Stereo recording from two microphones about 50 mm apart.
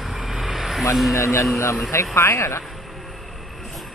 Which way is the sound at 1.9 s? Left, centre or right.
Left.